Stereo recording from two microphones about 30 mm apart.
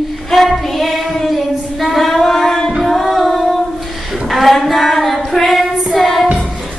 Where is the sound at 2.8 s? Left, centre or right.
Centre.